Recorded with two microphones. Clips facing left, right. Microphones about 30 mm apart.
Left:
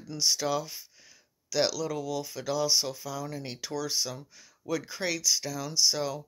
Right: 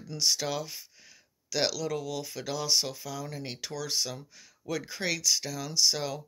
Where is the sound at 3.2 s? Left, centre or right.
Right.